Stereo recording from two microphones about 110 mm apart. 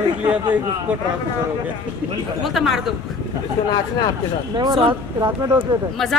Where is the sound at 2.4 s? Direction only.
Centre (ahead or behind).